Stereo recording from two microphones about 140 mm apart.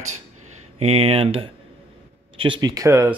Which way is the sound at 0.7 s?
45° right (ahead or behind).